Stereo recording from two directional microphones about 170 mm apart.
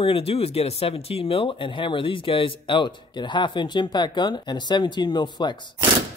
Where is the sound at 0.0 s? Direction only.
35° left (ahead or behind).